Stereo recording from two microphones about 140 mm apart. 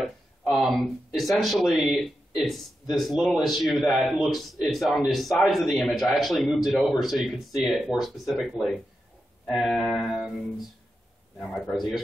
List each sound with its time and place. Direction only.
0.5 s a man's voice: centre (ahead or behind)